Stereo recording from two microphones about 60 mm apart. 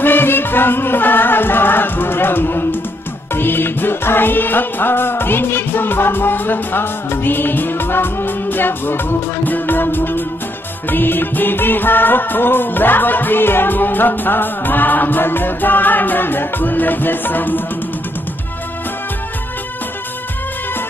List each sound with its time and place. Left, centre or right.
0.0 s music: left